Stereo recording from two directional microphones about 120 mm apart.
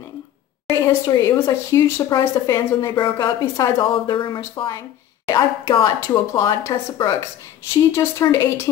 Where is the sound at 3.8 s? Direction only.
45° left (ahead or behind).